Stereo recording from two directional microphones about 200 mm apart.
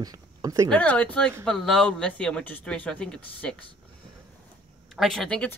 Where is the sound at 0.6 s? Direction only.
5° left (ahead or behind).